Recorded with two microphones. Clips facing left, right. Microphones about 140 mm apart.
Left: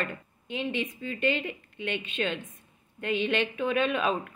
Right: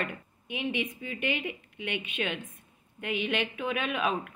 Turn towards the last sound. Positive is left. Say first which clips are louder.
# left 2 dB
turn(degrees=-10)  # may be behind; listen again after turning